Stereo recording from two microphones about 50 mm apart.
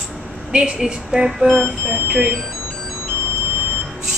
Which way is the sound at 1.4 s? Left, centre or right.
Centre.